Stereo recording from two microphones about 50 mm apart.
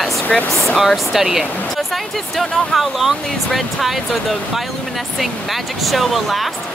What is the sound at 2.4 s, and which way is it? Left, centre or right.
Speech, centre.